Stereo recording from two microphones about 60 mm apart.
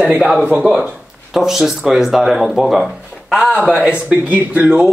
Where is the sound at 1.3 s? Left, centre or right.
Centre.